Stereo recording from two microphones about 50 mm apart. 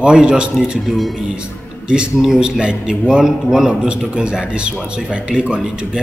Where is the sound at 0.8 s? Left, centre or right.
Centre.